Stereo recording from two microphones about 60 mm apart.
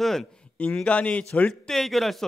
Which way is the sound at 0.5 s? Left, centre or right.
Left.